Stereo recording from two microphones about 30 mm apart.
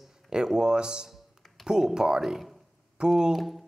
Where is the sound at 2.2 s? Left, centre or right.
Centre.